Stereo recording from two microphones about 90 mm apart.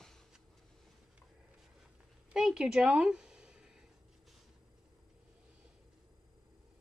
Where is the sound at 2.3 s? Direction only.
5° right (ahead or behind).